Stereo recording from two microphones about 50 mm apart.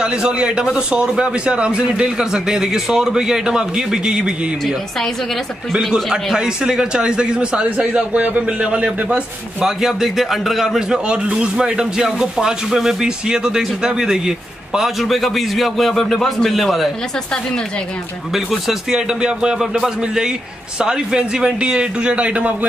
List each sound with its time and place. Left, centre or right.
0.0 s a man's voice: centre
4.6 s speech: centre
5.8 s a man's voice: centre; by 9.7 s right
9.7 s speech: centre
11.1 s a man's voice: centre
18.3 s a man's voice: centre; by 22.7 s right